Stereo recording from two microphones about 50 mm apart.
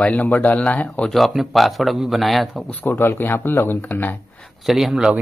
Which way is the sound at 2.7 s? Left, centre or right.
Left.